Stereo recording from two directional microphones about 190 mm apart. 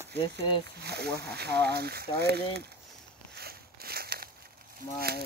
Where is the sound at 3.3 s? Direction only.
55° right (ahead or behind).